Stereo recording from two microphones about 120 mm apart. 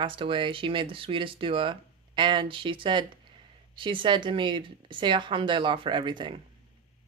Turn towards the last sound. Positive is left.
turn(degrees=-40)  # may be behind; listen again after turning